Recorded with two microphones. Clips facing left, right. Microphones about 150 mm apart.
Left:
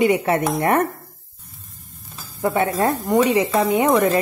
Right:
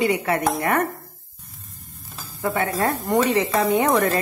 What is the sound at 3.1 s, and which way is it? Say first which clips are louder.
Speech: left 2 dB; 10° left (ahead or behind).